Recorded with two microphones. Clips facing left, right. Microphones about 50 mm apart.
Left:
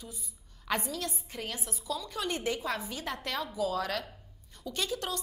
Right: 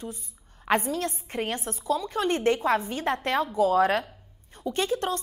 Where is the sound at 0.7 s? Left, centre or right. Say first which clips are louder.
Right 8 dB; right.